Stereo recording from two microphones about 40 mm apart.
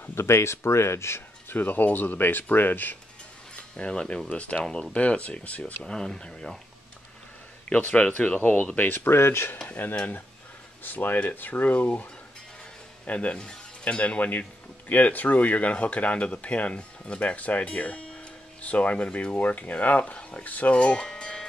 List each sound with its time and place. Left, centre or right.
0.2 s speech: left
1.0 s a sound: left
1.6 s speech: left
3.5 s speech: left
5.9 s speech: centre
7.7 s speech: left
8.7 s speech: left
10.8 s speech: left
20.8 s music: left